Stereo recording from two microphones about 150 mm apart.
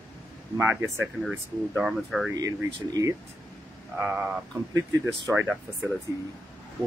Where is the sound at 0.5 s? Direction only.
15° right (ahead or behind).